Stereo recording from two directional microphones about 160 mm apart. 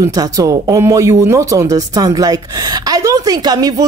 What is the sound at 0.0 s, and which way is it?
Speech, 20° right (ahead or behind).